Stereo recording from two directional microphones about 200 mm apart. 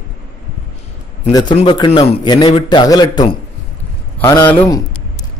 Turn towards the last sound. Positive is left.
turn(degrees=15)  # may be behind; listen again after turning